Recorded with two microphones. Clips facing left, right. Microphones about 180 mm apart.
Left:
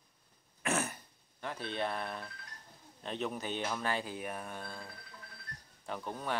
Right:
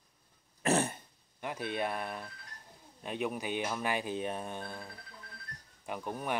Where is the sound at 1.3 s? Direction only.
15° right (ahead or behind).